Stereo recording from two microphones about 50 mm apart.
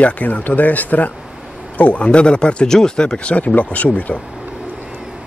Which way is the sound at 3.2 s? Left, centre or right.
Left.